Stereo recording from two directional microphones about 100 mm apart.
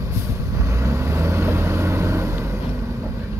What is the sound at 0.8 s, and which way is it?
Vehicle, 30° right (ahead or behind).